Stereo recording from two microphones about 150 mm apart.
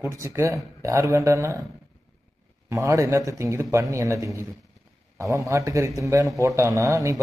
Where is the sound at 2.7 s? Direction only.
20° right (ahead or behind).